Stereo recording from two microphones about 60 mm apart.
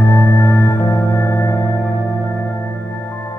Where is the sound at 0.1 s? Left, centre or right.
Left.